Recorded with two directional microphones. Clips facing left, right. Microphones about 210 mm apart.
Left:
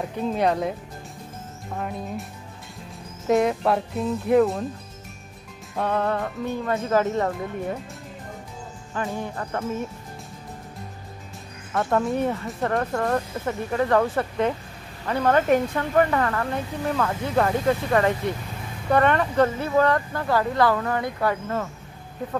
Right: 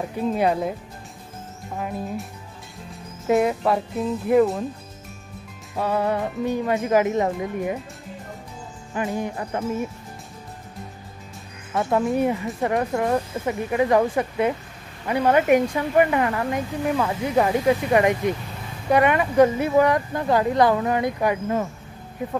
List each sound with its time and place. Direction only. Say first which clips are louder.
0.2 s speech: right 1 dB; 5° right (ahead or behind)
1.8 s speech: right 2 dB; centre (ahead or behind)
3.3 s speech: right 1 dB; 5° right (ahead or behind)
5.8 s speech: right 1 dB; 10° right (ahead or behind)
8.9 s speech: right 3 dB; 15° right (ahead or behind)
11.7 s speech: right 2 dB; 5° right (ahead or behind)